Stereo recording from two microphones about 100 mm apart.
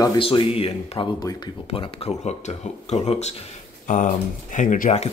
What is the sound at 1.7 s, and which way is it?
Speech, 75° left (ahead or behind).